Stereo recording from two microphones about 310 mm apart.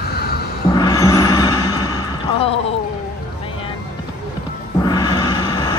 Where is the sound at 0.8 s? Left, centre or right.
Centre.